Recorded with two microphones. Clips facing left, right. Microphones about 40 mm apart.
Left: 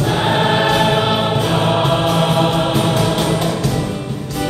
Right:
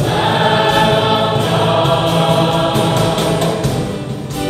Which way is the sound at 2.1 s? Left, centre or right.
Centre.